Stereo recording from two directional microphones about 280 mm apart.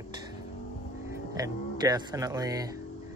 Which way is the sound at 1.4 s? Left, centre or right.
Centre.